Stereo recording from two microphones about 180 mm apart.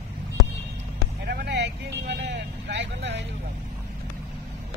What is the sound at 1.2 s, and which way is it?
Vehicle, 70° right (ahead or behind).